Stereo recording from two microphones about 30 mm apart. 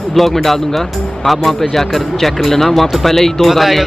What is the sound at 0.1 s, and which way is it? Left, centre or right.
Speech, centre.